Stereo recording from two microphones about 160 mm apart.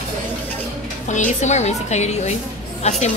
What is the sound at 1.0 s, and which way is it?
A woman's voice, 50° left (ahead or behind).